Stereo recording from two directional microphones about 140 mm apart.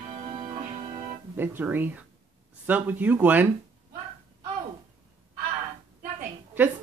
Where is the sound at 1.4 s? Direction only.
15° right (ahead or behind).